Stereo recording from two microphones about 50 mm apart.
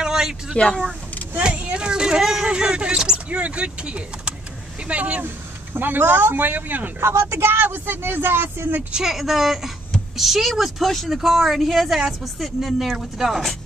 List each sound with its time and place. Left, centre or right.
0.0 s speech: centre
1.4 s speech: right
5.2 s speech: right
7.0 s speech: right
8.9 s speech: centre